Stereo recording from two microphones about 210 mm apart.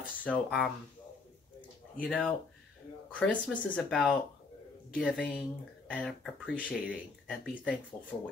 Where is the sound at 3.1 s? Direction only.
5° left (ahead or behind).